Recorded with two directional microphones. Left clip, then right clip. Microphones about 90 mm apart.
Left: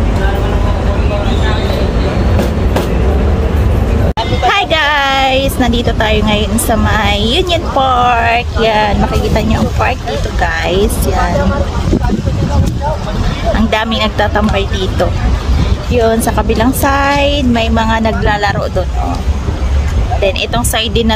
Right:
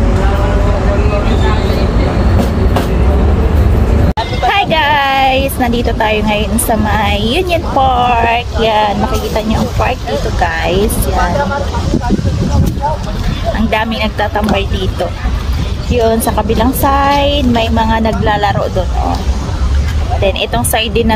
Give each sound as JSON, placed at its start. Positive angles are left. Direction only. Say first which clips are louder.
{"t": 4.5, "sound": "speech", "louder": "even", "side_deg": 30}
{"t": 10.4, "sound": "a woman's voice", "louder": "left 1 dB", "side_deg": 20}
{"t": 13.6, "sound": "speech", "louder": "even", "side_deg": 25}
{"t": 16.1, "sound": "a woman's voice", "louder": "even", "side_deg": 35}
{"t": 20.2, "sound": "a woman's voice", "louder": "even", "side_deg": 15}